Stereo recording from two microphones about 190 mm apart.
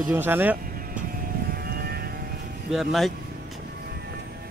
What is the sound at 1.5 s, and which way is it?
Vehicle, 50° right (ahead or behind).